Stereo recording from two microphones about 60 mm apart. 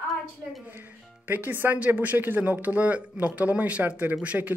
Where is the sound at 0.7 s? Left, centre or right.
Right.